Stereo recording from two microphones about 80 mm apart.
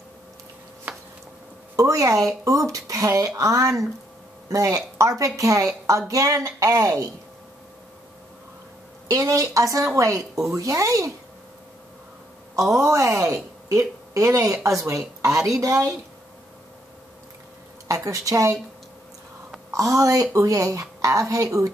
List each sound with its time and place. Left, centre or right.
1.8 s a woman's voice: right
9.0 s a woman's voice: right
12.7 s a woman's voice: right
17.8 s a woman's voice: right
19.7 s a woman's voice: right